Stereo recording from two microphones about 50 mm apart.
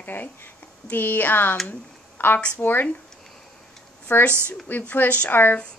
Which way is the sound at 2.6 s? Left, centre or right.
Left.